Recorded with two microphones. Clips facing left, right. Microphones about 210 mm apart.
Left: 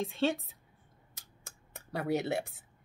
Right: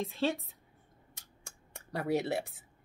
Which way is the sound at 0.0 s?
Centre (ahead or behind).